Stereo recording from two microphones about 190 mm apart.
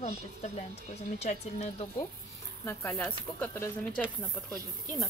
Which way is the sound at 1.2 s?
35° left (ahead or behind).